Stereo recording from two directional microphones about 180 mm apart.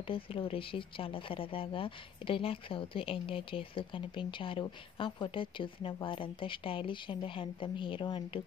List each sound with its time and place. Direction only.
0.0 s speech: 30° left (ahead or behind)